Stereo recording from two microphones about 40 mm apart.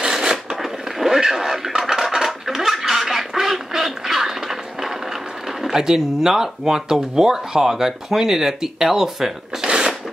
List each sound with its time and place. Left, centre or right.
0.0 s a sound: centre
5.6 s speech: centre
9.7 s mechanisms: centre